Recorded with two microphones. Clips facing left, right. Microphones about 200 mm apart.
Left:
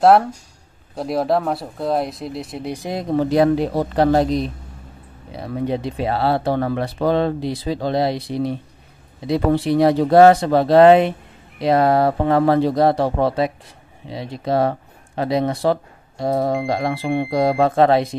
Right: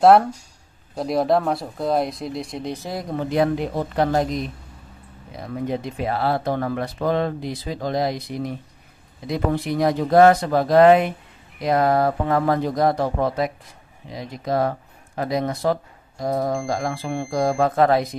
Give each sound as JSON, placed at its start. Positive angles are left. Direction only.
{"t": 0.0, "sound": "speech", "side_deg": 0}
{"t": 3.2, "sound": "speech", "side_deg": 35}